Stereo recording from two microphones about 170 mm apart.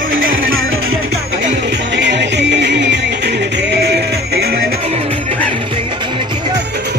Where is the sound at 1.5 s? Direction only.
90° right; by 4.7 s 70° right (ahead or behind).